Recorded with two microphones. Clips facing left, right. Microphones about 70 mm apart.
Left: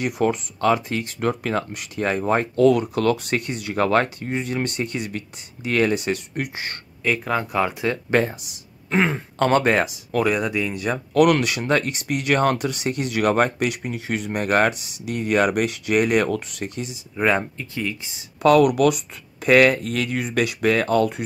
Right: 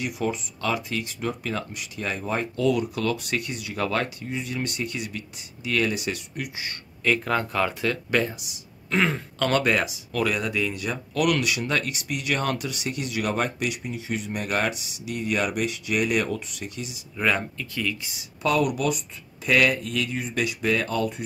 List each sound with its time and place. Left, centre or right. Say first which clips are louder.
0.0 s speech: left 6 dB; left
7.0 s speech: left 1 dB; centre
8.1 s speech: left 4 dB; left
8.9 s speech: left 3 dB; left
10.2 s speech: left 2 dB; left
17.2 s speech: left 4 dB; left
18.4 s speech: left 8 dB; left
20.2 s speech: left 5 dB; left